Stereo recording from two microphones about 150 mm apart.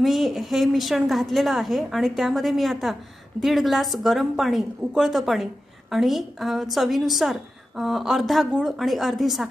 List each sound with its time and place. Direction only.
0.0 s a woman's voice: centre (ahead or behind)